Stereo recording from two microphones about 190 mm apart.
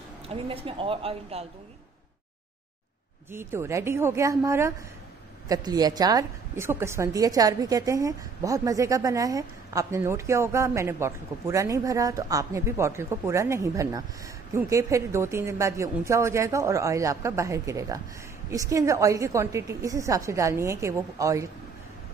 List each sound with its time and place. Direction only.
0.3 s a woman's voice: 30° right (ahead or behind)
3.3 s a woman's voice: 15° right (ahead or behind)